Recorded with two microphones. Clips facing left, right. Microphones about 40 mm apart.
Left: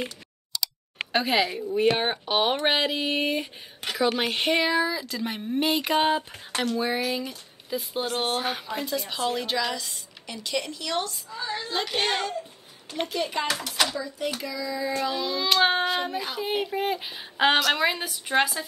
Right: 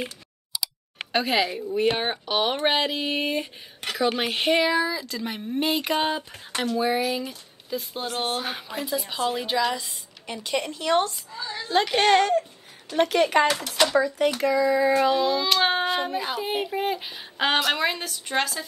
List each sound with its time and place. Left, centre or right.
0.0 s computer keyboard: centre
1.1 s a woman's voice: centre
9.7 s a woman's voice: right
10.3 s a woman's voice: right
11.3 s a woman's voice: left
11.8 s a woman's voice: right
13.6 s speech: centre
13.9 s a woman's voice: right
15.0 s a woman's voice: right
15.4 s speech: centre
16.1 s a woman's voice: centre